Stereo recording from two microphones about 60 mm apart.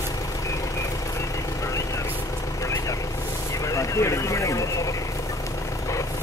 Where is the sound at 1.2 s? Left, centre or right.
Left.